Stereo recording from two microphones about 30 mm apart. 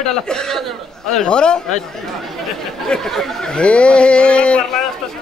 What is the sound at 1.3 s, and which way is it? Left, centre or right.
Speech, left.